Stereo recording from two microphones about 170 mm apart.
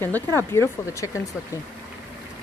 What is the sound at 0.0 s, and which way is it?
A woman's voice, 15° left (ahead or behind).